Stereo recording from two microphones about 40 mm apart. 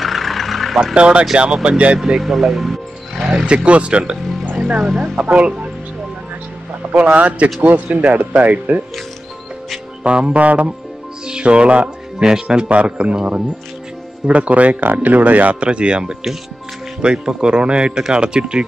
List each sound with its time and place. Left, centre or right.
0.0 s vehicle: centre
0.9 s speech: right
2.0 s speech: centre
3.2 s roaring cats: centre
3.4 s speech: right
4.7 s speech: centre
5.2 s speech: right
7.0 s speech: right
10.0 s speech: right
11.2 s speech: right
12.2 s speech: centre
12.4 s speech: right
15.7 s speech: right